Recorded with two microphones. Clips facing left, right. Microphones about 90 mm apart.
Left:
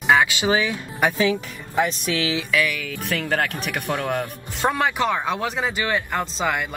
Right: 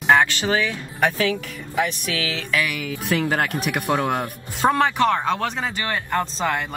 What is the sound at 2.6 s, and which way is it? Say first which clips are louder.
Speech: right 2 dB; 10° right (ahead or behind).